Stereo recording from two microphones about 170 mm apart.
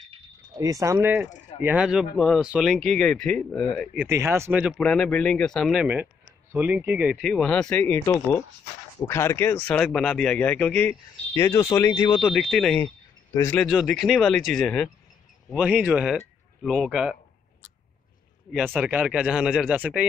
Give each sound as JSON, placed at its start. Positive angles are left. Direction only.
{"t": 0.6, "sound": "speech", "side_deg": -20}
{"t": 3.9, "sound": "speech", "side_deg": -10}
{"t": 4.7, "sound": "speech", "side_deg": 5}
{"t": 12.2, "sound": "speech", "side_deg": 0}
{"t": 13.6, "sound": "speech", "side_deg": 0}
{"t": 15.5, "sound": "speech", "side_deg": -5}
{"t": 18.5, "sound": "speech", "side_deg": -10}